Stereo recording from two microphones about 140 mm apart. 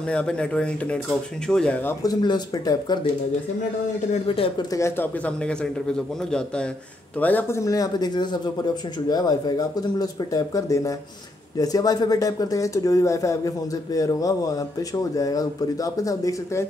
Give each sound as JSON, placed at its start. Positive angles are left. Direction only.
{"t": 0.1, "sound": "a man's voice", "side_deg": 5}
{"t": 2.0, "sound": "speech", "side_deg": 30}
{"t": 4.3, "sound": "a woman's voice", "side_deg": 40}
{"t": 4.7, "sound": "a man's voice", "side_deg": 20}